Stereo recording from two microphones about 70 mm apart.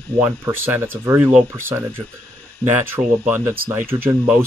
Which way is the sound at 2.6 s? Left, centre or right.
Left.